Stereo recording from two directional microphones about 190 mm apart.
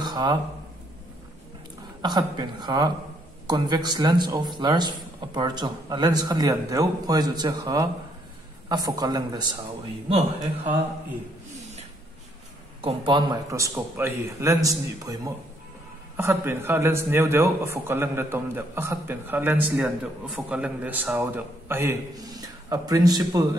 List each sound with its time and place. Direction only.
0.0 s a sound: 20° right (ahead or behind)
2.0 s a man's voice: 20° right (ahead or behind)
10.0 s a man's voice: 30° right (ahead or behind)
12.8 s a man's voice: 25° right (ahead or behind)